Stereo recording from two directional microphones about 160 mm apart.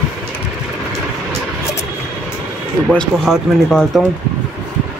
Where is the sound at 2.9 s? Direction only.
5° left (ahead or behind).